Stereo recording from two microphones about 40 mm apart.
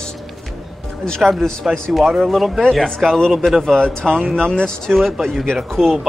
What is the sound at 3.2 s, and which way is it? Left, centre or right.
Speech, centre.